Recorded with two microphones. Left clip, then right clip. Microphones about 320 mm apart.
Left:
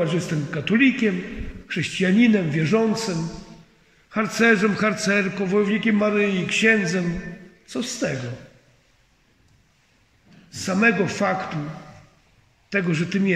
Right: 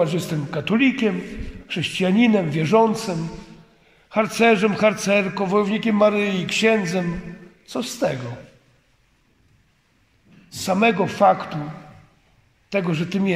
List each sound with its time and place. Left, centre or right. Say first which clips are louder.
0.0 s a man's voice: right 2 dB; centre
4.1 s a man's voice: right 2 dB; centre
10.5 s a man's voice: right 1 dB; centre
12.6 s a man's voice: right 1 dB; centre